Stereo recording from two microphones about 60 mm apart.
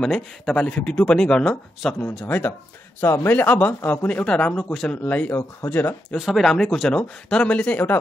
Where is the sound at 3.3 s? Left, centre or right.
Left; by 5.0 s centre.